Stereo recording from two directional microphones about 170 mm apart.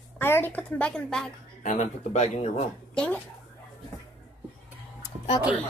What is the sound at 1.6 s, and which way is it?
Speech, 45° left (ahead or behind).